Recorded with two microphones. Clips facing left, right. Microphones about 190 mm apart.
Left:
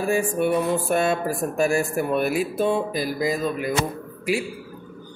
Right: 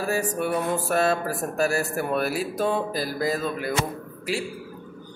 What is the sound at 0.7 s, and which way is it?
Speech, 35° right (ahead or behind).